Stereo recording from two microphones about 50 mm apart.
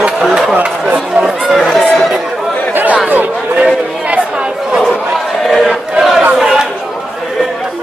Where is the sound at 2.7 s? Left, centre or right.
Right.